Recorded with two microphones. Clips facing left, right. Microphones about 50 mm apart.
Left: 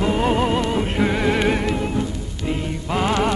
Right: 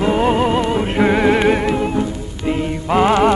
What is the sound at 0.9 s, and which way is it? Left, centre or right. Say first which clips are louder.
Music: right 7 dB; right.